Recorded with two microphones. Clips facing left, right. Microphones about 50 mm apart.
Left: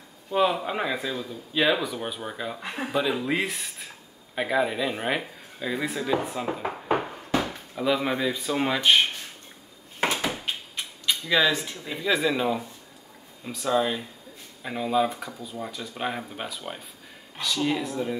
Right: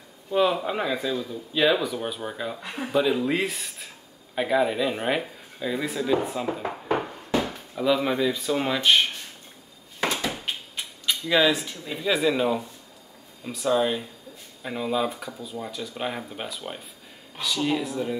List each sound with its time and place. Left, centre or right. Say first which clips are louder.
0.3 s speech: right 1 dB; centre
2.6 s speech: left 1 dB; left
2.9 s speech: right 3 dB; centre
9.9 s a sound: left 1 dB; left
11.6 s speech: even; centre
11.9 s speech: right 1 dB; centre